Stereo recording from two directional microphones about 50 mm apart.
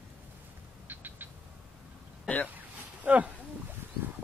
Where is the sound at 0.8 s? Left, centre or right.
Right.